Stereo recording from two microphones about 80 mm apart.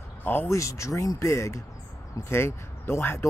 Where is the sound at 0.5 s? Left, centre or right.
Left.